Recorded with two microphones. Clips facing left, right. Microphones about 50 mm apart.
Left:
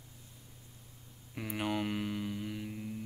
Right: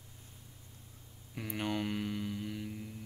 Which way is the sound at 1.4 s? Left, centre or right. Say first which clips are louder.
Left 1 dB; centre.